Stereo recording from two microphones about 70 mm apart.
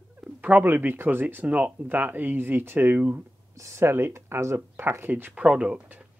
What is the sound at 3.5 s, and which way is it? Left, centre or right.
Speech, right.